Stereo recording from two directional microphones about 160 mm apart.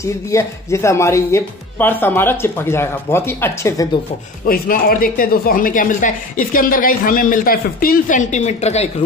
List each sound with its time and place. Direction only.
0.0 s speech: 20° left (ahead or behind)
4.5 s speech: 65° left (ahead or behind); by 9.0 s 45° left (ahead or behind)